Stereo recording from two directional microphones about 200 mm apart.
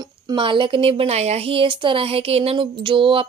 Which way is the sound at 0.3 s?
25° right (ahead or behind).